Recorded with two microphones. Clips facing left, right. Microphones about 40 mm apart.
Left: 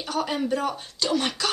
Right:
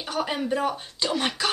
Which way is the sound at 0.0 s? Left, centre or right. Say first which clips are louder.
Left 1 dB; centre.